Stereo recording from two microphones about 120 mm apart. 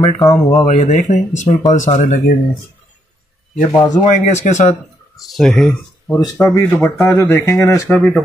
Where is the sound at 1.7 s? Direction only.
90° left.